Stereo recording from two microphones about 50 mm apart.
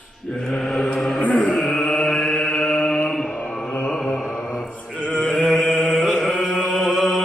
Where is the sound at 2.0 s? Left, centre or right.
Centre.